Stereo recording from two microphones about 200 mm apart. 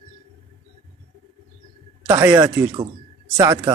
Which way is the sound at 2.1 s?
20° right (ahead or behind).